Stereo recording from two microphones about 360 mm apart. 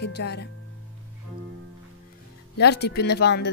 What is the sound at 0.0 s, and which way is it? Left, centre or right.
Speech, left.